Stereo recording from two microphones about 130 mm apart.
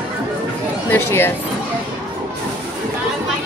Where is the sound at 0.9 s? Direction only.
20° left (ahead or behind).